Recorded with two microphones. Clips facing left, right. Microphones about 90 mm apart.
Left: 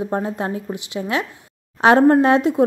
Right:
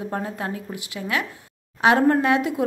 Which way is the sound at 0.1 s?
25° left (ahead or behind).